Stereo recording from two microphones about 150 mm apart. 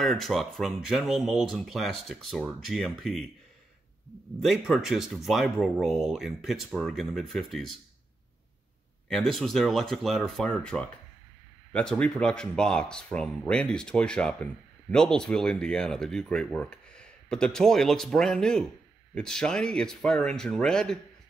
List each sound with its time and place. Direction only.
0.0 s speech: centre (ahead or behind)
4.4 s speech: centre (ahead or behind)
9.1 s speech: centre (ahead or behind)